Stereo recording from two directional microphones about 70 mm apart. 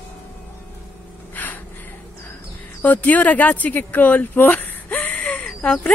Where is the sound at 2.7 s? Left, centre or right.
Left.